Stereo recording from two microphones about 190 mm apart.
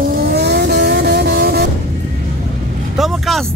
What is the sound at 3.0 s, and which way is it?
Vehicle, centre (ahead or behind).